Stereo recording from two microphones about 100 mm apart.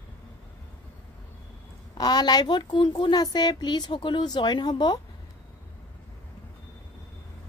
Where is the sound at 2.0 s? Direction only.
45° left (ahead or behind).